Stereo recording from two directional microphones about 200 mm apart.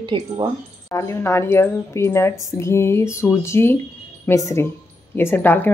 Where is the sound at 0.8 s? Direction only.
15° left (ahead or behind).